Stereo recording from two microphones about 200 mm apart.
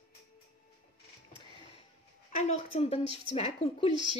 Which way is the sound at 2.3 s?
35° left (ahead or behind).